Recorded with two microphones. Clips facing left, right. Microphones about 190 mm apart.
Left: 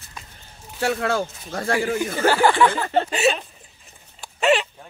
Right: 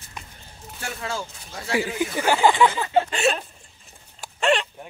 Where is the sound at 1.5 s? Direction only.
55° left (ahead or behind).